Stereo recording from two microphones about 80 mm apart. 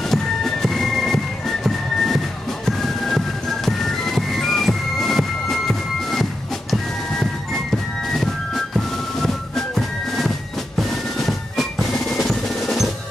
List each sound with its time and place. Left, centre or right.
0.1 s music: centre
8.7 s music: centre
10.8 s drum: centre